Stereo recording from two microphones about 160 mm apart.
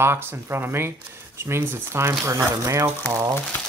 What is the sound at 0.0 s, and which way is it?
Speech, 15° right (ahead or behind).